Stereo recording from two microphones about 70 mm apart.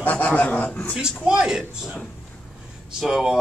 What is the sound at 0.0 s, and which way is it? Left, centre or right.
Speech, left.